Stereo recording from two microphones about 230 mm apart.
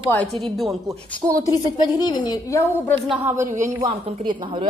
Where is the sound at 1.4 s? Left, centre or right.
Centre.